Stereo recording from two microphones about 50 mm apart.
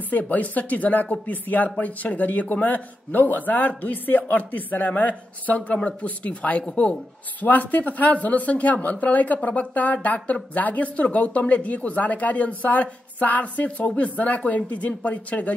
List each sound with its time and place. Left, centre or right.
0.1 s speech: left
7.4 s speech: left